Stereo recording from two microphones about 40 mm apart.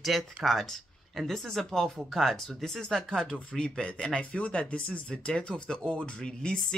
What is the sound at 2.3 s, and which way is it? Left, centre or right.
Speech, centre.